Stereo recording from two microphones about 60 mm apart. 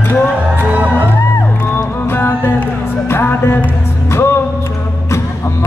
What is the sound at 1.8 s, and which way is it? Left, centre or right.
Music, left.